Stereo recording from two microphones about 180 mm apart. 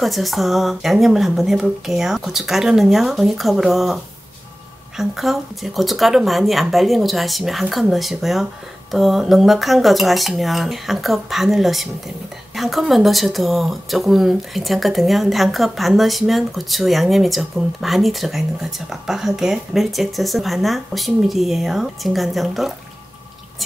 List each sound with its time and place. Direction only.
0.0 s speech: centre (ahead or behind)